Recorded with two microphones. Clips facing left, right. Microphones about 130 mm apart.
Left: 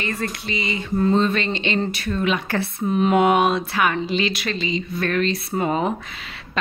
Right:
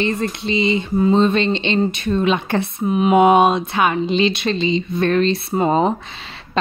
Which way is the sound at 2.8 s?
10° right (ahead or behind).